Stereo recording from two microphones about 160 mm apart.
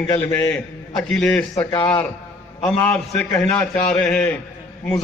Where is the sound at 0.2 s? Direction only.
15° left (ahead or behind).